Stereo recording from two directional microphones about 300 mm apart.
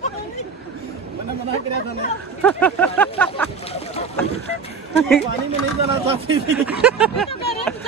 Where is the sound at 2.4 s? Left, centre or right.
Centre.